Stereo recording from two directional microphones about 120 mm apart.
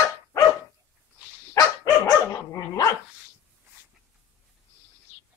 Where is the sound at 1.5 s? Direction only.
25° left (ahead or behind).